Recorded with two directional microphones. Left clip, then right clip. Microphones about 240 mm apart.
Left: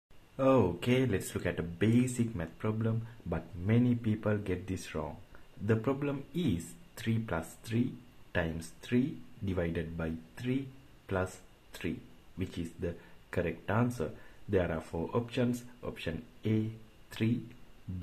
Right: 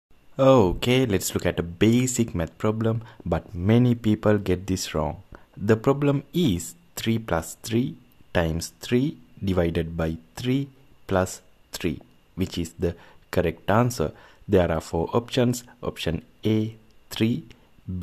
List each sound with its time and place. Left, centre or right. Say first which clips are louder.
0.4 s speech: right 10 dB; right
12.4 s speech: right 11 dB; right